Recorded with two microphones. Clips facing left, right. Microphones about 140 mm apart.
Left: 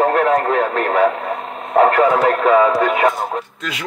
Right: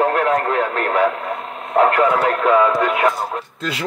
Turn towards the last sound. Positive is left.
turn(degrees=-30)  # may be behind; listen again after turning